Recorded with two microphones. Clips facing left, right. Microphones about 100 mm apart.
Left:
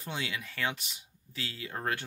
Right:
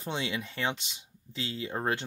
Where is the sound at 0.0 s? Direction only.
25° right (ahead or behind).